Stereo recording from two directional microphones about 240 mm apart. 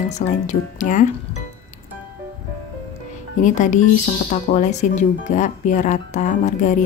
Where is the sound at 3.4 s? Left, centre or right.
Left.